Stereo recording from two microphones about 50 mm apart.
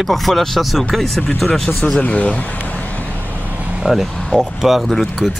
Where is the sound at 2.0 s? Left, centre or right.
Left.